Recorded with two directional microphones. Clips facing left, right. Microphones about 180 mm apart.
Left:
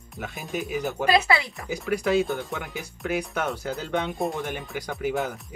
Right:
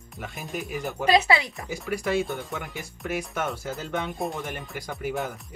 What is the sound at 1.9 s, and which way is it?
Speech, centre (ahead or behind).